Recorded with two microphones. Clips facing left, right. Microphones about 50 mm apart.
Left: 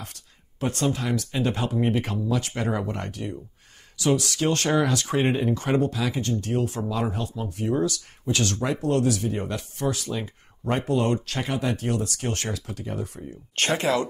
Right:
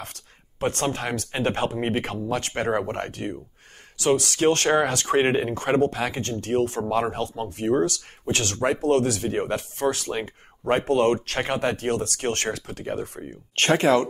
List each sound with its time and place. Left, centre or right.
0.0 s speech: right